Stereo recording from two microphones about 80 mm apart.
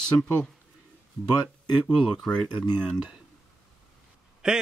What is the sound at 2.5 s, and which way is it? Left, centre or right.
Speech, left.